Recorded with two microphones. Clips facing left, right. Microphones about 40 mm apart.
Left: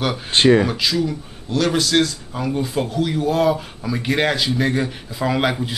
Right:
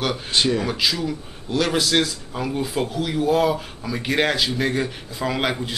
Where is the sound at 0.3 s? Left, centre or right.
Left.